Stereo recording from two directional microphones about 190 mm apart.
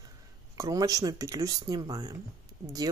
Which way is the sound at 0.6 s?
20° right (ahead or behind).